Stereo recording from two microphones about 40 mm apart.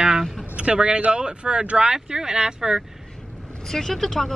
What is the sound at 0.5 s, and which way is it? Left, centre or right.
Speech, right.